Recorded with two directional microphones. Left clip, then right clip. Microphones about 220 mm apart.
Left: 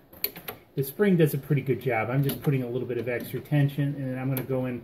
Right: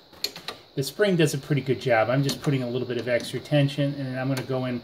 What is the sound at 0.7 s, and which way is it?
Speech, 35° right (ahead or behind).